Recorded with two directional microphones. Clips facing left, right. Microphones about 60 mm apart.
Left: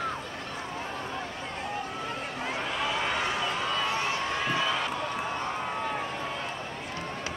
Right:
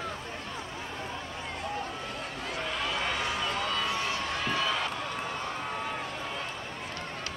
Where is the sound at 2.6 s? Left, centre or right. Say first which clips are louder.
Left 1 dB; centre.